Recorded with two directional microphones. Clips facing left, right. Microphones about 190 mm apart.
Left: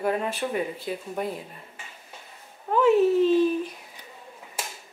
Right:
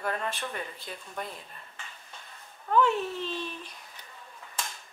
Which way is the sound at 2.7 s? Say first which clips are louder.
Left 7 dB; 5° left (ahead or behind).